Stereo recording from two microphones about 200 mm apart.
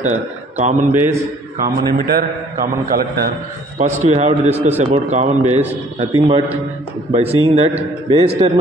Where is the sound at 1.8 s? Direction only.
50° right (ahead or behind).